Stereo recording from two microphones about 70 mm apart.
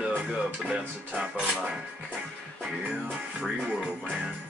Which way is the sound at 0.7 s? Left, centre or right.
Centre.